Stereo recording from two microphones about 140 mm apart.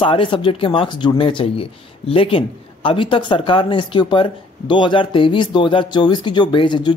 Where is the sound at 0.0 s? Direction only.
40° left (ahead or behind).